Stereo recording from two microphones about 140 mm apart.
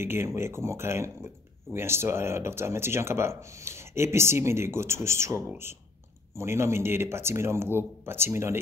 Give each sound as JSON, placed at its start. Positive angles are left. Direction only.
{"t": 0.0, "sound": "speech", "side_deg": -15}